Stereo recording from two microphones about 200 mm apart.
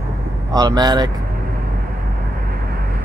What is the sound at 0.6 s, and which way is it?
Speech, 20° right (ahead or behind).